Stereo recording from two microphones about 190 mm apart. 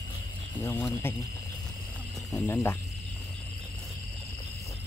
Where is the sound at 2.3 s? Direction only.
15° left (ahead or behind).